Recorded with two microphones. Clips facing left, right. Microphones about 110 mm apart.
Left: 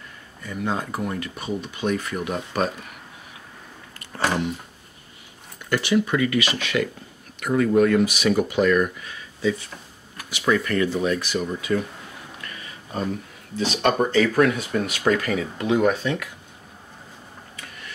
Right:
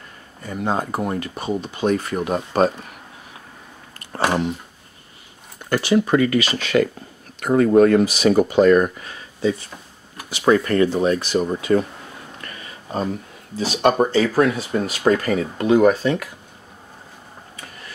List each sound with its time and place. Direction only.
0.4 s speech: 35° right (ahead or behind)
5.7 s speech: 35° right (ahead or behind)
13.7 s speech: 30° right (ahead or behind)